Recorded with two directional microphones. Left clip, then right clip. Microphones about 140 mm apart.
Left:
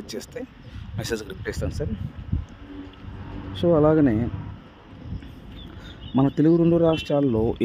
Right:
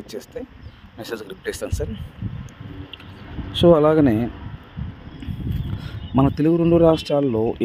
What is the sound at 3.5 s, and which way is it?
Speech, 25° right (ahead or behind).